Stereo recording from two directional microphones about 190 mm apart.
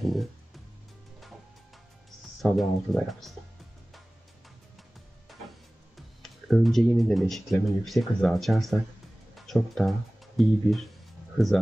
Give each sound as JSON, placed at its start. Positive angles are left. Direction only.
{"t": 0.0, "sound": "music", "side_deg": 0}
{"t": 2.0, "sound": "speech", "side_deg": 0}
{"t": 5.9, "sound": "speech", "side_deg": 0}